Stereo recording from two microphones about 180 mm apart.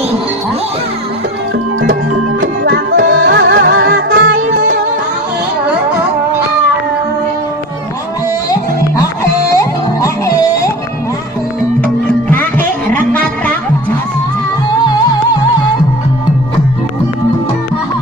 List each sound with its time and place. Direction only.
2.6 s music: 80° right
8.5 s music: 20° left (ahead or behind)
12.9 s music: 10° left (ahead or behind)